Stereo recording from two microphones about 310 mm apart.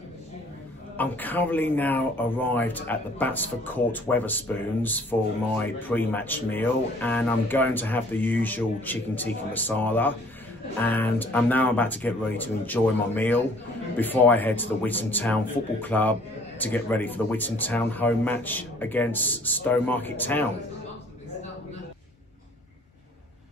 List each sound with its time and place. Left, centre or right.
0.9 s speech: centre